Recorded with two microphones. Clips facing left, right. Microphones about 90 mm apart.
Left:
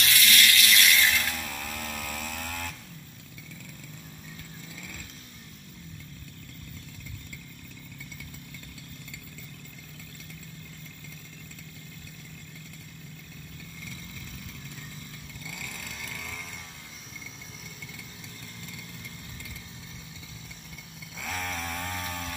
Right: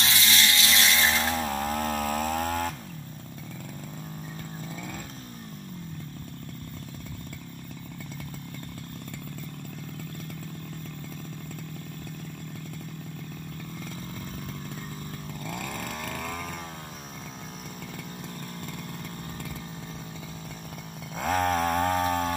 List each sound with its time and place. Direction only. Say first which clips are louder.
0.0 s chainsaw: left 1 dB; 25° right (ahead or behind)
15.4 s chainsaw: right 7 dB; 50° right (ahead or behind)
21.2 s a sound: right 10 dB; 45° right (ahead or behind)